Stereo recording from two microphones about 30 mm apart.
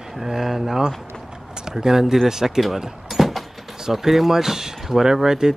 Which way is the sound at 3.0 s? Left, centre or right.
Centre.